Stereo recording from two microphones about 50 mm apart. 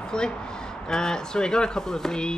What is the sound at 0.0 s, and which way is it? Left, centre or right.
Speech, centre.